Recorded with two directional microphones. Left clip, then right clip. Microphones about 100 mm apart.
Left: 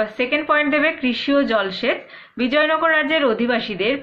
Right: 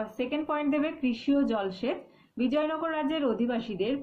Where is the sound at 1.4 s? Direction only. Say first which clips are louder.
Left 10 dB; 35° right (ahead or behind); by 3.9 s 20° right (ahead or behind).